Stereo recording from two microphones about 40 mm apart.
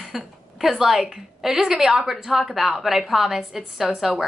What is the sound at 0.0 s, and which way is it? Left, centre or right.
A woman's voice, centre.